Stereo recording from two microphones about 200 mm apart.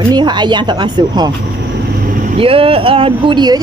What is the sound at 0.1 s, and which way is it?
Speech, 20° right (ahead or behind).